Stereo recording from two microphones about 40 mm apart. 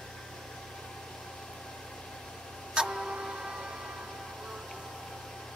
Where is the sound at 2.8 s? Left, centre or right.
Centre.